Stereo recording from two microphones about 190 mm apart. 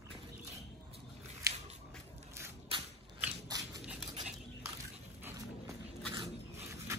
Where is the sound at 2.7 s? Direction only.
30° right (ahead or behind).